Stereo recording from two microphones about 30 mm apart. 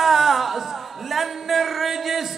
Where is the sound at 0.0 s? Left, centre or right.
Centre.